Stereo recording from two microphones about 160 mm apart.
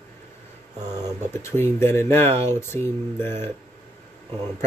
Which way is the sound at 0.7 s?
25° right (ahead or behind).